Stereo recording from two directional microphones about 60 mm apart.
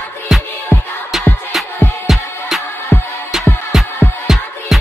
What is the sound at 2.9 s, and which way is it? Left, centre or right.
Music, left.